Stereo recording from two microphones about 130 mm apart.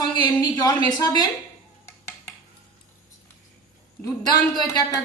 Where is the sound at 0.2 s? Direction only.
35° left (ahead or behind).